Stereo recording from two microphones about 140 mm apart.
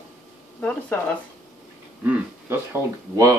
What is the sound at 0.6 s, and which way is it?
Speech, 10° left (ahead or behind).